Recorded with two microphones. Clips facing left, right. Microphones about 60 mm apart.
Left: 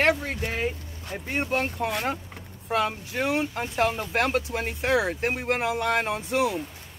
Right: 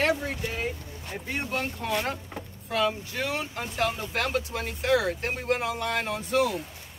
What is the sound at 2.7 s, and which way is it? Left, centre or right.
Speech, left.